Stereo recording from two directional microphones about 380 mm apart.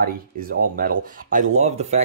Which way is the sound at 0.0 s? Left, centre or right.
Right.